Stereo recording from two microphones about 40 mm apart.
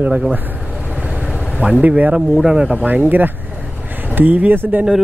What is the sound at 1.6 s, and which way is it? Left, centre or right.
Speech, right.